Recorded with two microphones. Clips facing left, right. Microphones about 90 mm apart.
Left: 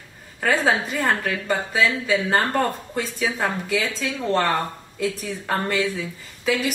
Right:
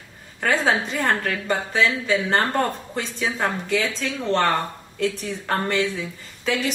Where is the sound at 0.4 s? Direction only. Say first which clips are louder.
Even; centre (ahead or behind).